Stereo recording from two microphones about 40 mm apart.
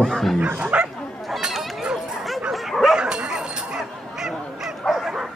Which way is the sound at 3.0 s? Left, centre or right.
Right.